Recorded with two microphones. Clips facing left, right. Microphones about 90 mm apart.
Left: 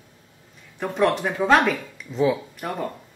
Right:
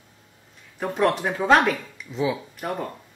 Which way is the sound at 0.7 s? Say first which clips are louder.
Left 1 dB; centre (ahead or behind).